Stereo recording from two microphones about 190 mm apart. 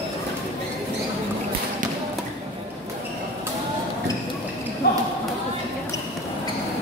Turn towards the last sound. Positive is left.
turn(degrees=55)  # may be behind; listen again after turning